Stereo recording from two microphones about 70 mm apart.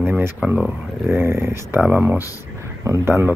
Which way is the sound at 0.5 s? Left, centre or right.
Centre.